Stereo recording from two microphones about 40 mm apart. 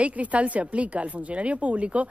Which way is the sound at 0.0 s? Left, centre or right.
Right.